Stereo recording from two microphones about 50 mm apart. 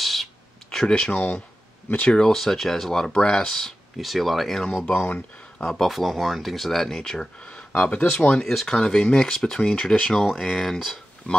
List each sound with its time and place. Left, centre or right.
0.0 s a sound: centre
1.1 s speech: left
2.0 s speech: centre
4.0 s speech: centre
4.9 s speech: left
5.7 s speech: centre
7.7 s speech: left
8.5 s speech: centre
10.3 s speech: centre
11.3 s speech: left